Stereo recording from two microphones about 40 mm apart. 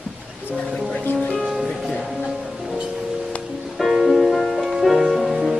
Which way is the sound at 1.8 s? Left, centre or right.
Centre.